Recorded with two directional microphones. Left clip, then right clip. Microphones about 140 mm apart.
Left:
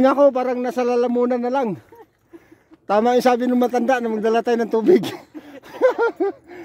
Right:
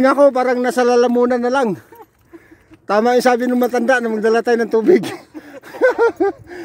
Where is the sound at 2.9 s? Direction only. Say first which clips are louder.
Right 3 dB; 25° left (ahead or behind).